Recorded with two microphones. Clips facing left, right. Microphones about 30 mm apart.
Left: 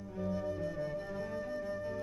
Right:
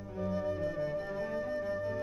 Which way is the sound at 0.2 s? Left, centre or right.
Centre.